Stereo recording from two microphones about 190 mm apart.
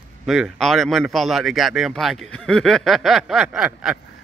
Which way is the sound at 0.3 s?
Centre (ahead or behind).